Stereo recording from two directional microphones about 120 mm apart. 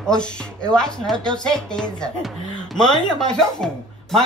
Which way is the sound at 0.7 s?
5° left (ahead or behind).